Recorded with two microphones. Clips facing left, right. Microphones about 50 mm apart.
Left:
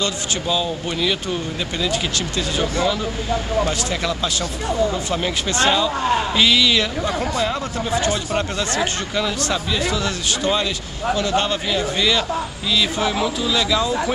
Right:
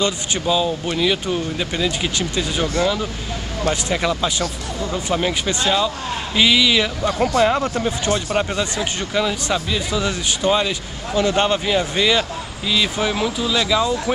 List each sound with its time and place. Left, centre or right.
0.5 s speech: centre
2.8 s speech: centre
6.3 s speech: centre
7.3 s speech: right
8.4 s speech: centre